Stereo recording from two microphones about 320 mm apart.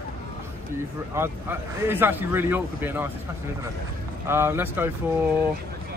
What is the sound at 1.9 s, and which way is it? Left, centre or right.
A man's voice, centre.